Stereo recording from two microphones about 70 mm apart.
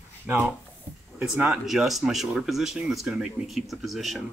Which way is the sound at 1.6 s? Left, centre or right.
Centre.